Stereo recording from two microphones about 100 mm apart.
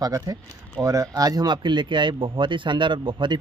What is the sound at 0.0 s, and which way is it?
Speech, 35° right (ahead or behind).